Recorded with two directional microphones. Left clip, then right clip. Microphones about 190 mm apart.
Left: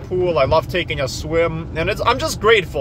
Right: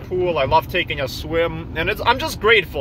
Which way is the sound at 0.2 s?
15° left (ahead or behind).